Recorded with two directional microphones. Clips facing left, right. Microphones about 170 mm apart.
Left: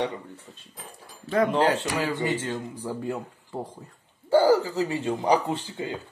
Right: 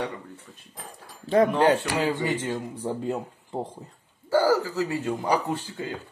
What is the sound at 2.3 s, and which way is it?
Speech, 15° right (ahead or behind).